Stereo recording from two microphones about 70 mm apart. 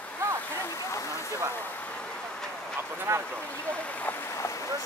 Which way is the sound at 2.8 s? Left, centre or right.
Right.